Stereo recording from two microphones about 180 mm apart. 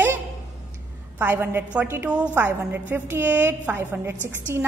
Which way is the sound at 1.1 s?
10° right (ahead or behind).